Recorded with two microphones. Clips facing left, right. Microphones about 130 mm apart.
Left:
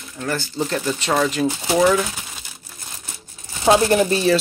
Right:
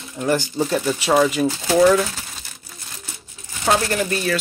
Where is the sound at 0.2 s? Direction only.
15° right (ahead or behind); by 2.0 s centre (ahead or behind).